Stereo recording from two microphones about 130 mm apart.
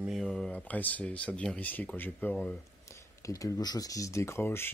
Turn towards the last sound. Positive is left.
turn(degrees=20)  # may be behind; listen again after turning